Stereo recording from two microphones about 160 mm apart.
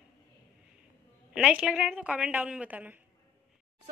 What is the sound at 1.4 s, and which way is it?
Speech, 5° right (ahead or behind).